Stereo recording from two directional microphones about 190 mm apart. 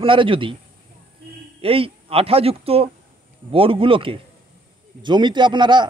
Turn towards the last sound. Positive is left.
turn(degrees=-25)  # may be behind; listen again after turning